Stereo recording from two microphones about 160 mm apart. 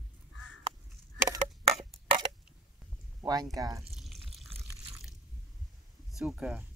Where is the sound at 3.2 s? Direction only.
25° right (ahead or behind).